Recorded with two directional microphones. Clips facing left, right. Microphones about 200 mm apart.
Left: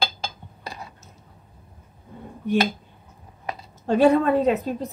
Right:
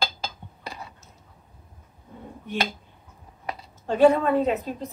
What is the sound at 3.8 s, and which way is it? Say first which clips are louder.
Speech: left 1 dB; 40° left (ahead or behind).